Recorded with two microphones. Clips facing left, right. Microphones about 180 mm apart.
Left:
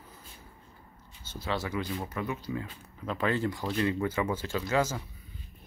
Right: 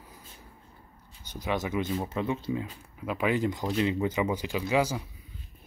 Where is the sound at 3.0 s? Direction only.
10° right (ahead or behind).